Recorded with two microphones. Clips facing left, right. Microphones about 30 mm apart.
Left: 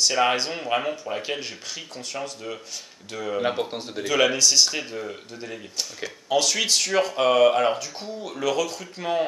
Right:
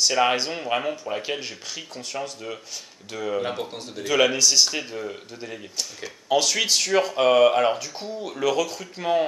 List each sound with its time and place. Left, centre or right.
0.0 s speech: centre
3.4 s speech: centre
4.0 s speech: centre
6.2 s speech: centre